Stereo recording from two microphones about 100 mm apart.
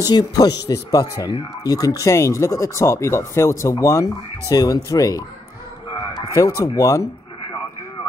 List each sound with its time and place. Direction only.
0.0 s speech: 40° left (ahead or behind)
6.3 s speech: 30° left (ahead or behind)